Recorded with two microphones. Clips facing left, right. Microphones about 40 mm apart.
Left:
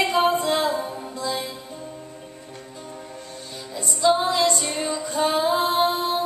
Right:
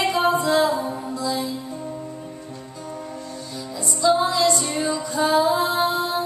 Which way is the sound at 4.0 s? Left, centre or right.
Left.